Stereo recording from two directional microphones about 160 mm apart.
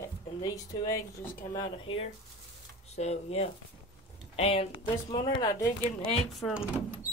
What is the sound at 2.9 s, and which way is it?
Speech, 40° left (ahead or behind).